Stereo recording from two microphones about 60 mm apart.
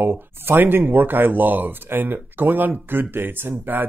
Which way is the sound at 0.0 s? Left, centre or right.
Right.